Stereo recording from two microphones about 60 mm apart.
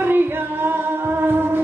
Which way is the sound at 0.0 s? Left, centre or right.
Right.